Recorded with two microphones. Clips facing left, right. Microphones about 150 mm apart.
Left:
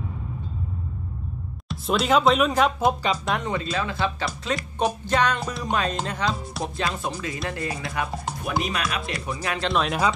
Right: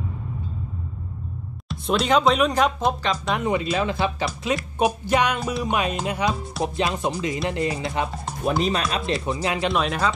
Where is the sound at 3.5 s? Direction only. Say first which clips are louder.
Right 4 dB; 15° right (ahead or behind).